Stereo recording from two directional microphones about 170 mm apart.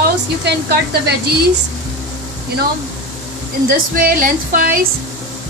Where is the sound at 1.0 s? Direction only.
70° right (ahead or behind).